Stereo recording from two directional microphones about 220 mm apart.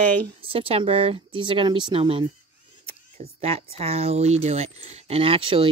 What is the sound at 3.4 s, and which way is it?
Speech, 25° right (ahead or behind).